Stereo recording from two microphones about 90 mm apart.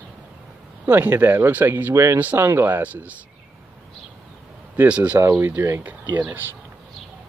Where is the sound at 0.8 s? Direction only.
20° right (ahead or behind).